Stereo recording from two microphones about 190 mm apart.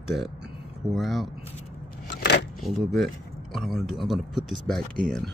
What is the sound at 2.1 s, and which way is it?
Vehicle, 60° left (ahead or behind).